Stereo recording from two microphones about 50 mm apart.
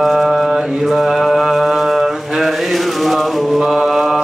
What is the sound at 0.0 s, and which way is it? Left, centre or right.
Mantra, centre.